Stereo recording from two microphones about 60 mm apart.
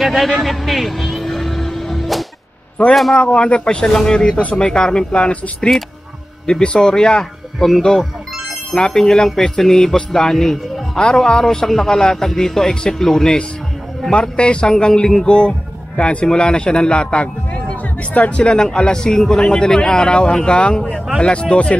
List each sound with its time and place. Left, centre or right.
0.0 s music: centre
2.9 s a man's voice: centre
3.2 s a man's voice: left
7.5 s a man's voice: centre